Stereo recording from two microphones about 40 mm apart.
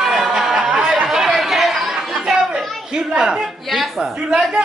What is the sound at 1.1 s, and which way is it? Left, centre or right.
Chatter, centre.